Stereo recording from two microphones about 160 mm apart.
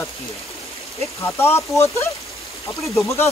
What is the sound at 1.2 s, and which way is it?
Speech, 15° left (ahead or behind).